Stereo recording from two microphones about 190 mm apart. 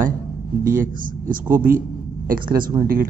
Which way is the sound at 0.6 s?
45° right (ahead or behind).